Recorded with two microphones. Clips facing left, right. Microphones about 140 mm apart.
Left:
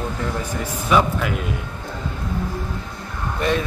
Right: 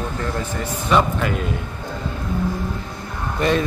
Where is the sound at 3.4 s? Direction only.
Centre (ahead or behind).